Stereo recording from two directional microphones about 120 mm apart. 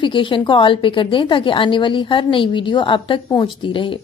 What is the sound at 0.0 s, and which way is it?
A woman's voice, 45° left (ahead or behind).